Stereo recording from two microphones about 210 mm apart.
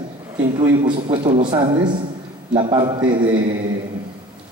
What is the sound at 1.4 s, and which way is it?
A man's voice, 20° right (ahead or behind).